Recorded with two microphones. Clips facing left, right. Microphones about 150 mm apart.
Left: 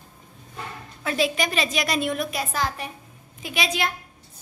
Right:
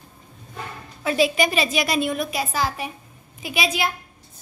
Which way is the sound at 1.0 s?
5° right (ahead or behind).